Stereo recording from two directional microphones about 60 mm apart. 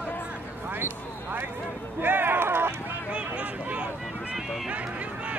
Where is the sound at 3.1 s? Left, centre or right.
Right.